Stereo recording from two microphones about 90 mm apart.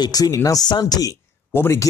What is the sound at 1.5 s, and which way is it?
Speech, 30° left (ahead or behind).